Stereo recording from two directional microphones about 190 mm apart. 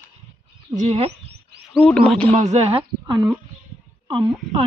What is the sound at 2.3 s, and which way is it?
Speech, 35° right (ahead or behind).